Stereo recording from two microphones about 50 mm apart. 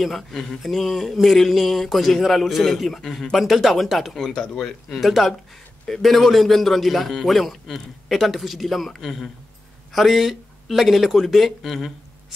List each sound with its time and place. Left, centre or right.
0.0 s speech: centre
4.1 s speech: centre
5.0 s speech: centre